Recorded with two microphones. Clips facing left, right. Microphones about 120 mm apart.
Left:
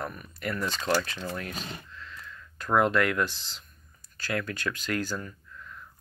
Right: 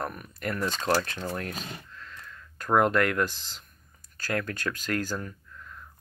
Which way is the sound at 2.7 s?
45° right (ahead or behind).